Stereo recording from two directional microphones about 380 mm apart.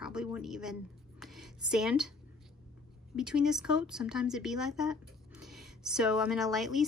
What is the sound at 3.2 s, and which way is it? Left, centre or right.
A woman's voice, centre.